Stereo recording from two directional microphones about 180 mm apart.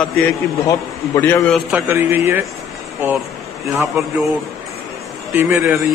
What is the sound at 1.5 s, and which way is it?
A man's voice, 5° right (ahead or behind).